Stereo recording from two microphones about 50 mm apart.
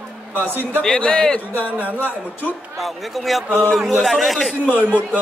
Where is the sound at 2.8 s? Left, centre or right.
Centre.